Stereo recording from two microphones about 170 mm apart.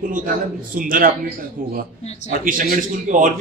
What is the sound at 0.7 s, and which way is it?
Speech, 55° right (ahead or behind).